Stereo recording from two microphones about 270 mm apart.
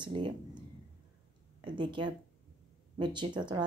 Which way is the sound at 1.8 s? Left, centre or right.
Centre.